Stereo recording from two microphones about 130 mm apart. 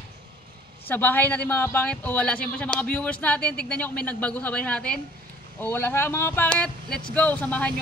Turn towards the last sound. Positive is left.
turn(degrees=10)  # may be behind; listen again after turning